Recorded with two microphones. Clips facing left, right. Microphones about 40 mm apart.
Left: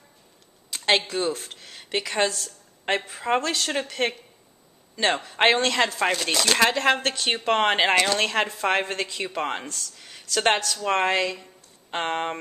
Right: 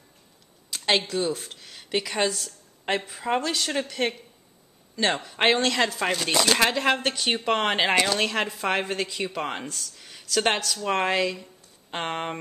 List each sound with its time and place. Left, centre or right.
0.7 s a sound: centre
1.0 s speech: left
1.3 s a woman's voice: centre